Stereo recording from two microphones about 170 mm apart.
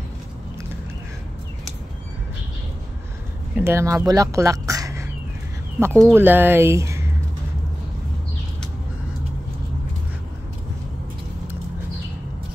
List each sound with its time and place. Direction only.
3.5 s speech: 15° right (ahead or behind)
5.9 s speech: 5° left (ahead or behind)
6.1 s speech: 10° right (ahead or behind)